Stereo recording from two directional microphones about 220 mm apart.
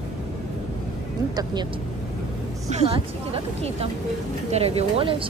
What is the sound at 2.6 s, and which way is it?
A woman's voice, 30° right (ahead or behind).